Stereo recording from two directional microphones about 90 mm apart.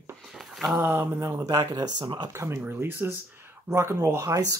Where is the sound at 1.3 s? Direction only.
45° right (ahead or behind).